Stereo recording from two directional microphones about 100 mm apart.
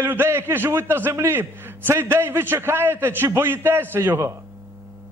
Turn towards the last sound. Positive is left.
turn(degrees=-25)  # may be behind; listen again after turning